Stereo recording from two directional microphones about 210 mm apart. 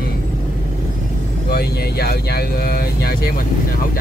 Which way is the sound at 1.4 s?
50° left (ahead or behind).